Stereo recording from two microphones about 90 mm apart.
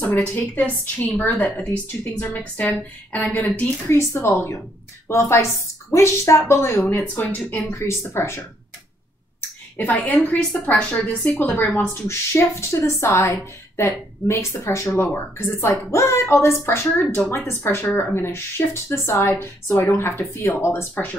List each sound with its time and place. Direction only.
0.0 s a woman's voice: 20° left (ahead or behind); by 6.9 s 35° left (ahead or behind)
6.9 s a woman's voice: 20° left (ahead or behind)
7.8 s a woman's voice: 30° left (ahead or behind)
10.0 s a woman's voice: 15° left (ahead or behind)
20.9 s a woman's voice: 15° left (ahead or behind)